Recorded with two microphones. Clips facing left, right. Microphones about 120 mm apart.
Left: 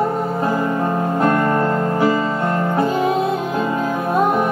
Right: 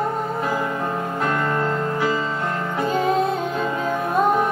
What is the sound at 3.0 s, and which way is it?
Music, 5° left (ahead or behind).